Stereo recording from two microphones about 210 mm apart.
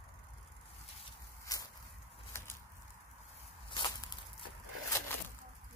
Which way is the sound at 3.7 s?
20° left (ahead or behind).